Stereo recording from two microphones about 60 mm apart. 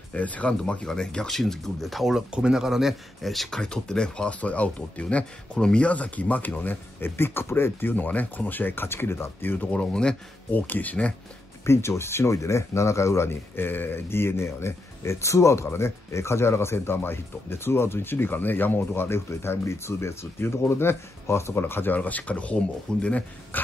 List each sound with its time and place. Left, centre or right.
0.1 s speech: left
0.6 s speech: centre
4.4 s speech: left
9.7 s speech: centre
10.5 s speech: left
11.6 s speech: left